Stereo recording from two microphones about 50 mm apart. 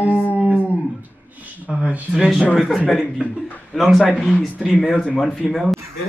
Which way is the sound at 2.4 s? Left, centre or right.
Centre.